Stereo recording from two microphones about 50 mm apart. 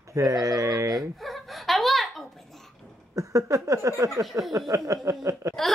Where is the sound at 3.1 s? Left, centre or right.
Right.